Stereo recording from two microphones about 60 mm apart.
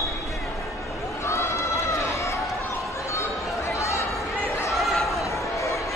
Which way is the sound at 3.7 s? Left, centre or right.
Left.